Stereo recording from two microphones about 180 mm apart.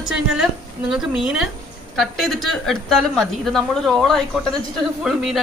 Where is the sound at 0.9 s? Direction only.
5° right (ahead or behind).